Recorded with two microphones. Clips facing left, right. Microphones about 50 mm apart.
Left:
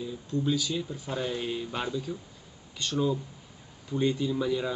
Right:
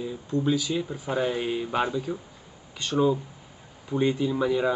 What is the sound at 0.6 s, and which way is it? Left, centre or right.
Speech, centre.